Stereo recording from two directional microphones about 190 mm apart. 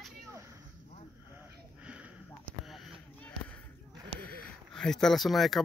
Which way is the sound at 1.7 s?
5° right (ahead or behind).